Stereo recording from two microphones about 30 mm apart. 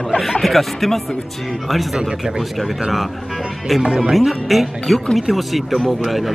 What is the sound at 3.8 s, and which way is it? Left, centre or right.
Speech, right.